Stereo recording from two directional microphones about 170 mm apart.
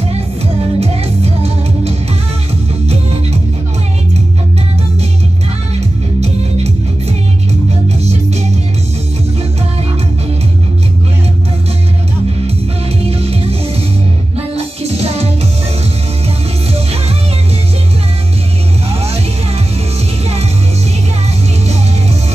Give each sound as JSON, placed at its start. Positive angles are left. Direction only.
{"t": 0.7, "sound": "music", "side_deg": -35}
{"t": 5.8, "sound": "music", "side_deg": -40}
{"t": 13.0, "sound": "music", "side_deg": -35}
{"t": 18.9, "sound": "music", "side_deg": -35}